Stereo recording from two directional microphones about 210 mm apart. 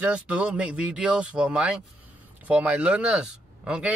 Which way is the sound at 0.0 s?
5° right (ahead or behind).